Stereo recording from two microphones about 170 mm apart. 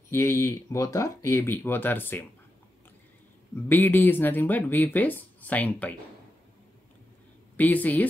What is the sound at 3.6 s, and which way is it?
Speech, 10° left (ahead or behind).